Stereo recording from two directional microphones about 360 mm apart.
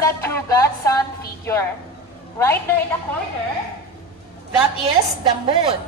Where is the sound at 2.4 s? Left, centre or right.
Centre.